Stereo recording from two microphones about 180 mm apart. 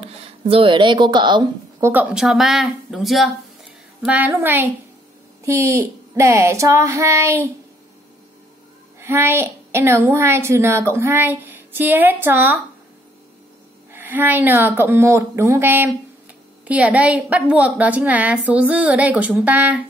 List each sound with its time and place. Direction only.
0.0 s speech: 30° right (ahead or behind)
1.9 s a woman's voice: 10° right (ahead or behind)
9.0 s a woman's voice: 15° right (ahead or behind)
13.9 s a woman's voice: 10° right (ahead or behind)